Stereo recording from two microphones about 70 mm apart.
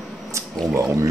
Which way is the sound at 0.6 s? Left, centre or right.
Right.